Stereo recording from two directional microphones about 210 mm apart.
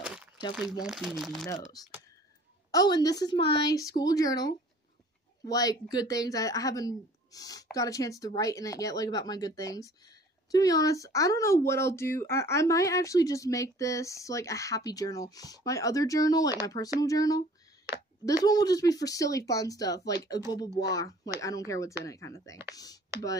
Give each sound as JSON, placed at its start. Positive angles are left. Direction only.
{"t": 0.0, "sound": "crumpling", "side_deg": -5}
{"t": 0.8, "sound": "speech", "side_deg": 0}
{"t": 1.8, "sound": "speech", "side_deg": 15}